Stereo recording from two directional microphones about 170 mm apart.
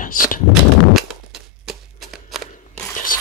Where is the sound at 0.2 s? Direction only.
55° left (ahead or behind).